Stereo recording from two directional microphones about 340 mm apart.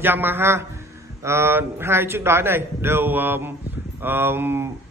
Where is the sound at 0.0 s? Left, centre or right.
Centre.